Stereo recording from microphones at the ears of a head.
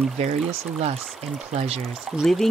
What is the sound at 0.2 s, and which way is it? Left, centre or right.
Speech, right.